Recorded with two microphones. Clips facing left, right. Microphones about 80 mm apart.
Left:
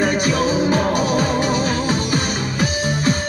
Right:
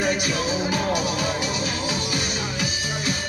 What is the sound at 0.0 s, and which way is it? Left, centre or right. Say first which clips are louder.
Music: left 6 dB; left.